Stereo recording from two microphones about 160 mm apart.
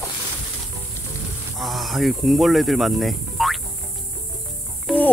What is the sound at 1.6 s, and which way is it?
Speech, centre (ahead or behind).